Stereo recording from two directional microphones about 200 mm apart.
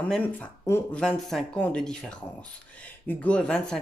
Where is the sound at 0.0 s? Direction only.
5° left (ahead or behind).